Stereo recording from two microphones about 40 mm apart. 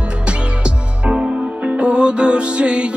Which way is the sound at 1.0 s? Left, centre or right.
Right.